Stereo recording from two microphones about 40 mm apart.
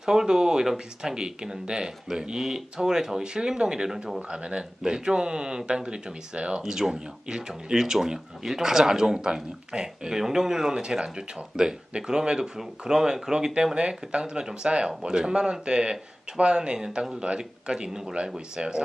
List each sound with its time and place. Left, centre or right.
0.0 s speech: centre
4.3 s speech: right
6.6 s speech: centre
10.8 s speech: right